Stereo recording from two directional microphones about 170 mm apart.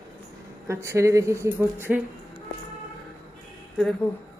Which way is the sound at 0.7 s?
15° right (ahead or behind).